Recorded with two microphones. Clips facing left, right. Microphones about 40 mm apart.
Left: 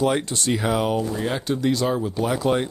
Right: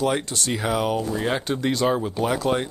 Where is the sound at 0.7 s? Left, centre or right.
Centre.